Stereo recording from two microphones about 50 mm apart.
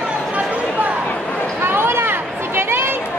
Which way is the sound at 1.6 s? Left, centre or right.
Right.